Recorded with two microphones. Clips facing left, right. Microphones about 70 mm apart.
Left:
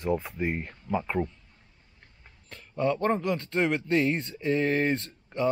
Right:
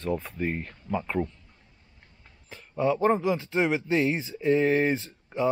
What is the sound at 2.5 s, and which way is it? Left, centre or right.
Speech, centre.